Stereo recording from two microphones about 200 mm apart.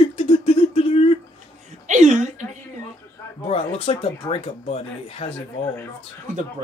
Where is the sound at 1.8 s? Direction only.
35° right (ahead or behind).